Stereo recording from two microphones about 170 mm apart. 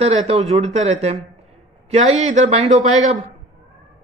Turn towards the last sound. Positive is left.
turn(degrees=-45)  # may be behind; listen again after turning